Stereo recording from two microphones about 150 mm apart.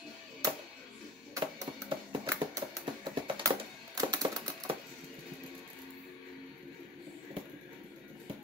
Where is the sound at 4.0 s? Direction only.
25° right (ahead or behind).